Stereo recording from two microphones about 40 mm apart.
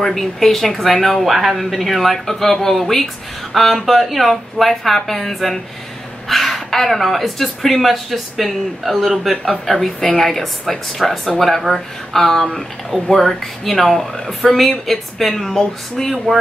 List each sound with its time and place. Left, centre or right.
0.0 s speech: centre